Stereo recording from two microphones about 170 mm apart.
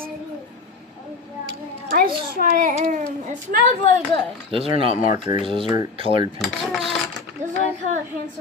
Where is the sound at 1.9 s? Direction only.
60° right (ahead or behind).